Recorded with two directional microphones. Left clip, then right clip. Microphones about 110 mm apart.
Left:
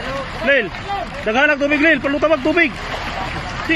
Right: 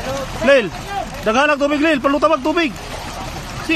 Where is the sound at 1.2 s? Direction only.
85° right.